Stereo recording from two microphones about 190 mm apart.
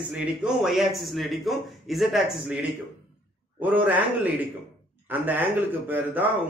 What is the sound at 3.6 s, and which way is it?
Speech, 10° right (ahead or behind).